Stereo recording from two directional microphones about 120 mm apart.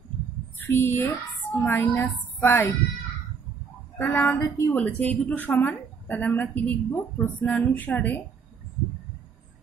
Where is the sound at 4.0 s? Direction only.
15° left (ahead or behind).